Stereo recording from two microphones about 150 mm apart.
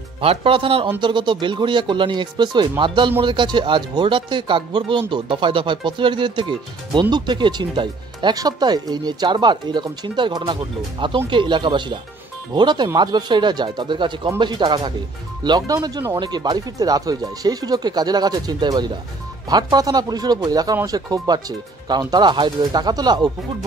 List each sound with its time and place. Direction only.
0.2 s speech: 40° right (ahead or behind)